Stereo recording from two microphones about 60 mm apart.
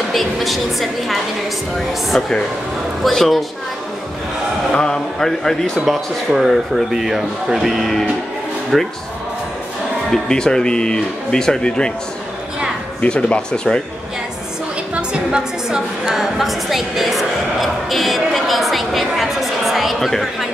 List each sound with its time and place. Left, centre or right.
0.1 s speech: centre
4.7 s speech: centre
10.1 s speech: centre
13.0 s speech: centre
15.0 s a woman's voice: centre